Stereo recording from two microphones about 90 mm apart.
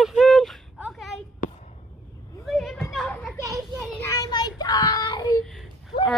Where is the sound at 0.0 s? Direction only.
Centre (ahead or behind).